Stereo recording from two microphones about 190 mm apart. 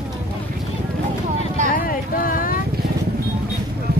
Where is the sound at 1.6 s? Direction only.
50° left (ahead or behind).